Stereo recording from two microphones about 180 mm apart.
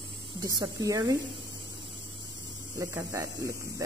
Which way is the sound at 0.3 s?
20° right (ahead or behind).